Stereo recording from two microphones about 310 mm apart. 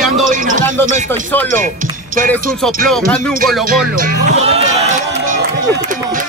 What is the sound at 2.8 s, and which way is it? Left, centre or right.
Music, centre.